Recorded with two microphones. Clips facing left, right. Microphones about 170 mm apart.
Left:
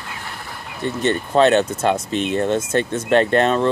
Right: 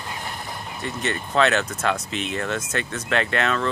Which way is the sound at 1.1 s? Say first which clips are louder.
Left 6 dB; 30° left (ahead or behind).